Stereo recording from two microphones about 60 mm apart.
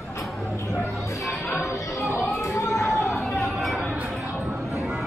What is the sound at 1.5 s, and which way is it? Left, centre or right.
Music, left.